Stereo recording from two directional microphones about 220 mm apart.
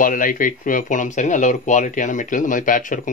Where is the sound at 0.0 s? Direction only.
40° left (ahead or behind).